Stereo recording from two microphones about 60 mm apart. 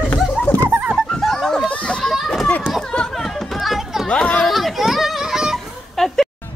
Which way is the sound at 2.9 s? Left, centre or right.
Centre.